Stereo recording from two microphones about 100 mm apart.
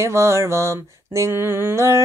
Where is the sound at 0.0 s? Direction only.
30° right (ahead or behind).